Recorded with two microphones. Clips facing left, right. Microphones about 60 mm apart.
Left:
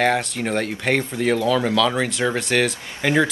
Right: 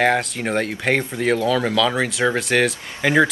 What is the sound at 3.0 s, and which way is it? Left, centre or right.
Speech, centre.